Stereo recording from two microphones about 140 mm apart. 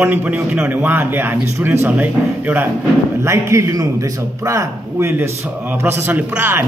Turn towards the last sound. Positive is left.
turn(degrees=-15)  # may be behind; listen again after turning